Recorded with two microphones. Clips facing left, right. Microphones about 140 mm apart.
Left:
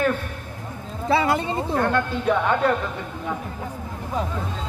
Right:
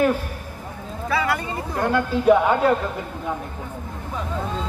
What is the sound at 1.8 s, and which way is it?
Speech, 10° right (ahead or behind).